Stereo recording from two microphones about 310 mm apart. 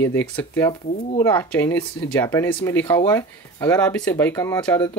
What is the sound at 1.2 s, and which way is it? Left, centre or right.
Speech, centre.